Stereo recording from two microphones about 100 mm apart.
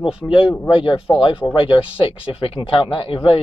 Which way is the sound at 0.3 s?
65° left (ahead or behind).